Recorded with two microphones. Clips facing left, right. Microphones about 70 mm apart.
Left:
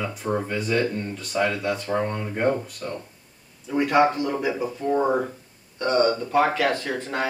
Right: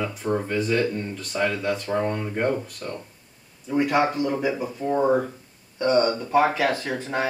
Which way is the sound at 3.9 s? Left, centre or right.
Left.